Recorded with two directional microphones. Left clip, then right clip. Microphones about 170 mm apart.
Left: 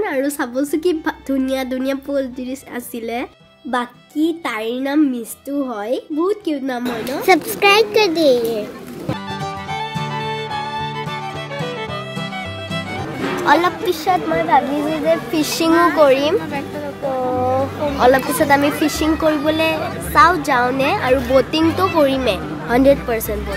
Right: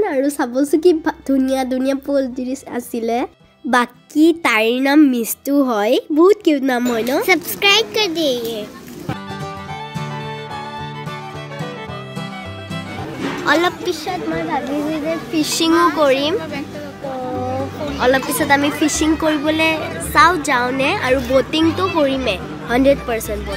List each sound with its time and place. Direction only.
0.0 s a woman's voice: 15° right (ahead or behind)
3.7 s speech: 55° right (ahead or behind)
7.2 s a child's voice: 5° left (ahead or behind)
13.5 s a woman's voice: centre (ahead or behind)
13.8 s a woman's voice: 20° left (ahead or behind)
15.5 s a woman's voice: centre (ahead or behind)
17.9 s a woman's voice: 5° left (ahead or behind)